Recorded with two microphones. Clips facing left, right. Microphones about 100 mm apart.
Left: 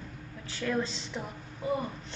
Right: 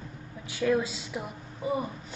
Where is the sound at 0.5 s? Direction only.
10° right (ahead or behind).